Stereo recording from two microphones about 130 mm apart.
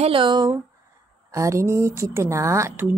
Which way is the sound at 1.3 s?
25° right (ahead or behind).